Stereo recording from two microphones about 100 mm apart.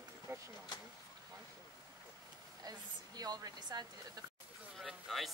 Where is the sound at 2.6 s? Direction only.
40° right (ahead or behind).